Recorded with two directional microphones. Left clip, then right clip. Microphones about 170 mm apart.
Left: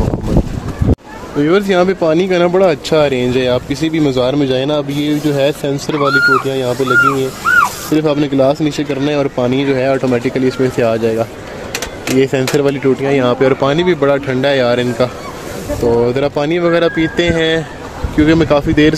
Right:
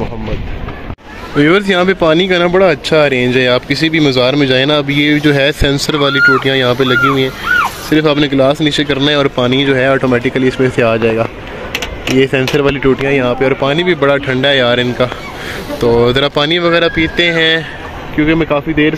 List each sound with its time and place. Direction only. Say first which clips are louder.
1.4 s speech: right 2 dB; centre (ahead or behind); by 17.6 s 15° left (ahead or behind)
18.1 s speech: left 1 dB; 30° left (ahead or behind)